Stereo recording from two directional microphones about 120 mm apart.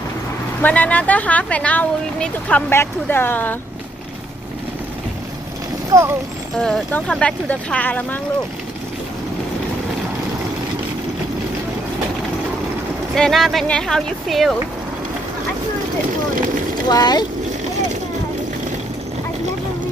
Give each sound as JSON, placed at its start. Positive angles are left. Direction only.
{"t": 0.6, "sound": "speech", "side_deg": 10}
{"t": 2.7, "sound": "speech", "side_deg": 20}
{"t": 5.9, "sound": "speech", "side_deg": -25}
{"t": 6.6, "sound": "speech", "side_deg": 5}
{"t": 13.1, "sound": "speech", "side_deg": 5}
{"t": 16.9, "sound": "speech", "side_deg": 35}